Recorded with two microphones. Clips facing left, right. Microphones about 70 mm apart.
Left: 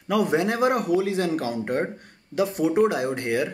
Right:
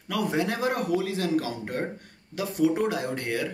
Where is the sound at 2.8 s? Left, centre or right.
Centre.